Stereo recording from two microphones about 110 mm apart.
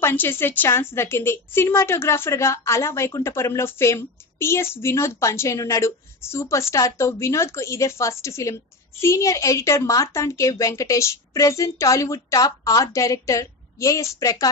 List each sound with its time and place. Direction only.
0.0 s a woman's voice: 20° left (ahead or behind)